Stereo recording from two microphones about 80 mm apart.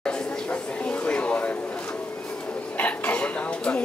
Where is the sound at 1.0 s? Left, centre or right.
Centre.